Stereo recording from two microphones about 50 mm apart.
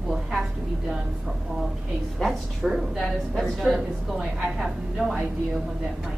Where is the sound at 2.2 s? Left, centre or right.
Centre.